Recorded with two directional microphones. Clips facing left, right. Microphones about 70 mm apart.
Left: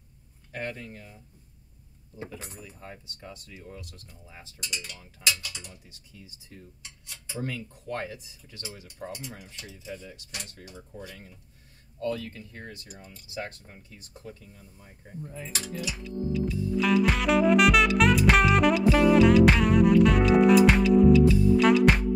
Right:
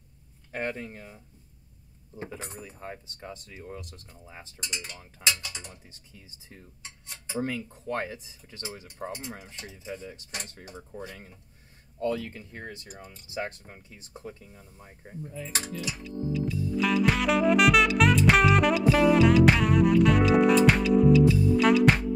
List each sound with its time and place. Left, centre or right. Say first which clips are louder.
0.5 s speech: right 3 dB; right
2.4 s speech: right 4 dB; right
12.8 s speech: right 2 dB; right
13.4 s speech: right 3 dB; right
16.0 s music: left 1 dB; centre